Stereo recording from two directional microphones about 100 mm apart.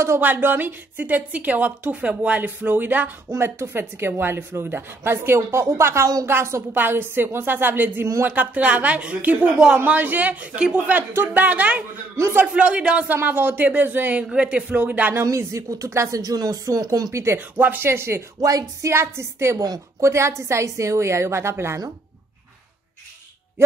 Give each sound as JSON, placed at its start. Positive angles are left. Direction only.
{"t": 0.0, "sound": "a woman's voice", "side_deg": -20}
{"t": 12.2, "sound": "speech", "side_deg": -30}
{"t": 12.5, "sound": "a woman's voice", "side_deg": -10}
{"t": 15.2, "sound": "speech", "side_deg": -30}
{"t": 17.1, "sound": "speech", "side_deg": -25}